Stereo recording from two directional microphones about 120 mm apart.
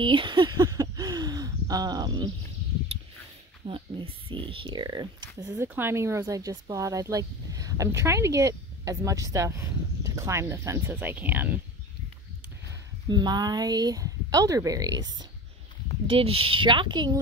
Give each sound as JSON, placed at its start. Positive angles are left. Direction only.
{"t": 0.0, "sound": "speech", "side_deg": -45}
{"t": 3.6, "sound": "speech", "side_deg": -50}
{"t": 5.6, "sound": "speech", "side_deg": -20}
{"t": 13.1, "sound": "speech", "side_deg": -35}
{"t": 16.1, "sound": "speech", "side_deg": -50}